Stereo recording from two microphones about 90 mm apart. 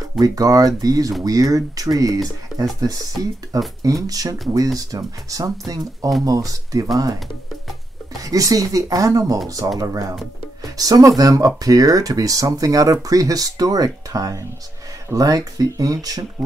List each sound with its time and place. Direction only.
0.2 s speech: 40° right (ahead or behind)
8.1 s speech: 40° right (ahead or behind)